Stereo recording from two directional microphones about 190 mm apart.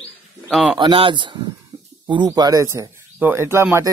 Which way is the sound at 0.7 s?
25° right (ahead or behind).